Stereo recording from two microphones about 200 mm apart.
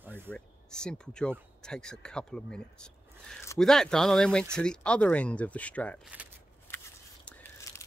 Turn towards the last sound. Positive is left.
turn(degrees=10)  # may be behind; listen again after turning